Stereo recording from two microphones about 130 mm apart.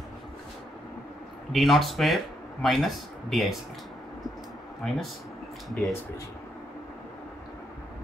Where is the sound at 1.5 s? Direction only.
Centre (ahead or behind).